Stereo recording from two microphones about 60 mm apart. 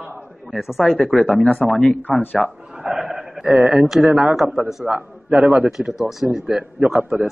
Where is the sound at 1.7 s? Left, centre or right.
Left.